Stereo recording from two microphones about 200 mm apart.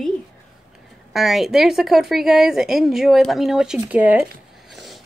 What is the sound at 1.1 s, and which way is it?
A woman's voice, centre (ahead or behind).